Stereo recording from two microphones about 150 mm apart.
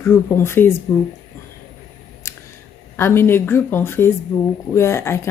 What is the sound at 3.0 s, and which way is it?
A woman's voice, 15° left (ahead or behind).